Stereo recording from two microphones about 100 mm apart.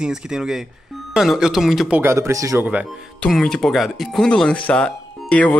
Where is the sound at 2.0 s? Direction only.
30° right (ahead or behind).